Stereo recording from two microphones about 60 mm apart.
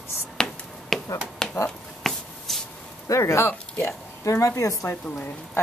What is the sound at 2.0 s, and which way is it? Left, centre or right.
Shuffle, centre.